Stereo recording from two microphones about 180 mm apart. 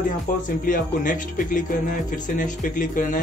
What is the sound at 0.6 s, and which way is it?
A man's voice, 50° left (ahead or behind).